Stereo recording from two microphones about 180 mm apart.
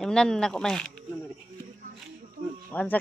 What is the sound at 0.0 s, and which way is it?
Speech, 5° left (ahead or behind).